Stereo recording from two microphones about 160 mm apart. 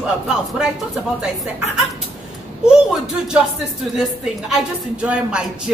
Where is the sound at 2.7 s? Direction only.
5° right (ahead or behind).